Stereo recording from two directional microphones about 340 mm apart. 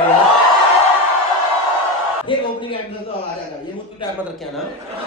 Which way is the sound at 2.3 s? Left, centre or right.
Centre.